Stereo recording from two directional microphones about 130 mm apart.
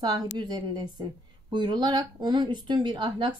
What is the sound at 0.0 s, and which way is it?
Speech, 35° right (ahead or behind).